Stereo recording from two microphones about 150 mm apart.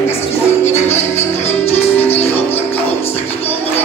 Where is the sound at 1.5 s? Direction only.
45° left (ahead or behind).